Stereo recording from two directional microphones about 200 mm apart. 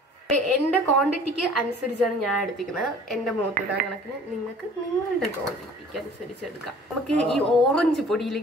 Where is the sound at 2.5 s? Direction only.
Centre (ahead or behind).